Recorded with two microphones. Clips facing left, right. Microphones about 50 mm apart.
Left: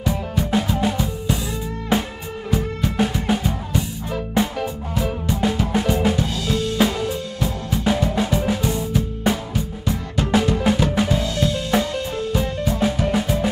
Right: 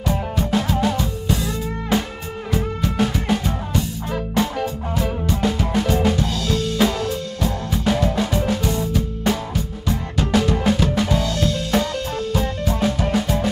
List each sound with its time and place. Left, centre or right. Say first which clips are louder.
0.4 s music: even; centre
9.8 s drum kit: even; centre
12.7 s music: even; centre